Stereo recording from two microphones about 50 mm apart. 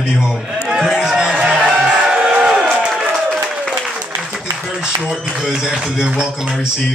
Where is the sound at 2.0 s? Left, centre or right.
Centre.